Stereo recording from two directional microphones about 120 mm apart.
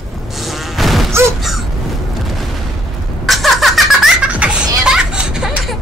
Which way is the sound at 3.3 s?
Centre (ahead or behind).